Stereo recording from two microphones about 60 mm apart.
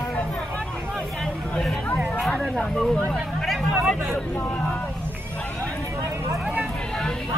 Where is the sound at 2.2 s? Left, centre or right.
Centre.